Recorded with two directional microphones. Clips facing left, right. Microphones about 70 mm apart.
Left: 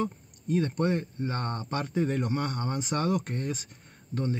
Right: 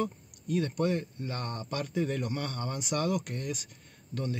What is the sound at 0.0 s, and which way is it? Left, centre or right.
Speech, left.